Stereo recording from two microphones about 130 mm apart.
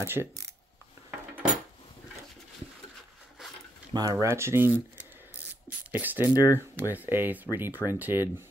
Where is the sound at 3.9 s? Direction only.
30° right (ahead or behind); by 5.9 s 10° right (ahead or behind).